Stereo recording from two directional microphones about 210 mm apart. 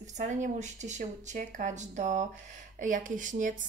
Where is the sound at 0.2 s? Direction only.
35° right (ahead or behind).